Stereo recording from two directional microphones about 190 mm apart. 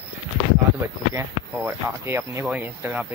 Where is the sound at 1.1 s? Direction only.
15° right (ahead or behind).